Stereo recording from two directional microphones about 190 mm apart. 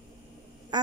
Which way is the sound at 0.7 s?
20° right (ahead or behind).